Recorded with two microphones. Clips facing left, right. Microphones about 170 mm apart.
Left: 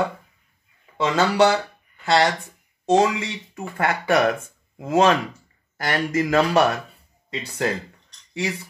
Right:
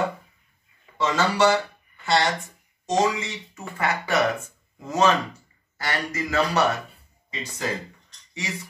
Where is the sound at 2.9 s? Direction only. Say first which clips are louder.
Left 4 dB; 60° left (ahead or behind).